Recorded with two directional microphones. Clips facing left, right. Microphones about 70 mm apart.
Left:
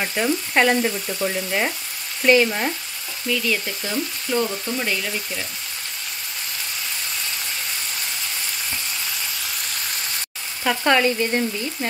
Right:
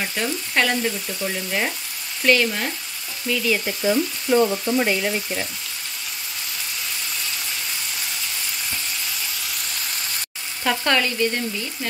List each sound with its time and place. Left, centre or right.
0.0 s frying: centre
2.2 s frying: centre
3.3 s frying: centre; by 5.5 s right
10.8 s frying: centre